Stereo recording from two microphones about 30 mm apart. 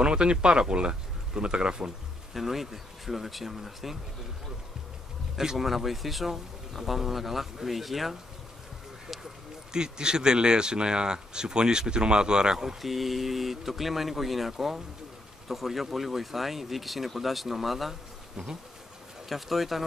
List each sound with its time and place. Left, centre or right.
0.0 s speech: right
2.3 s speech: centre
5.6 s speech: centre
9.7 s speech: right
12.8 s speech: centre
19.2 s speech: centre